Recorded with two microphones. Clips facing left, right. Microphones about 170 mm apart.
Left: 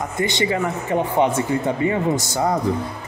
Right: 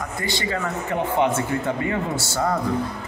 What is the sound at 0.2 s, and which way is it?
Speech, 20° left (ahead or behind).